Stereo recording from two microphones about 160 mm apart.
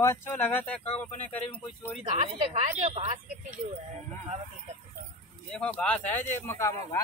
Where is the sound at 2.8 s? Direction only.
40° right (ahead or behind).